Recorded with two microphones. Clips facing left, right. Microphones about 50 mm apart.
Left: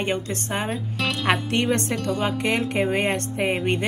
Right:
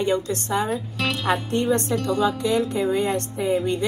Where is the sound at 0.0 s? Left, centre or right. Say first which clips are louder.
Right 3 dB; left.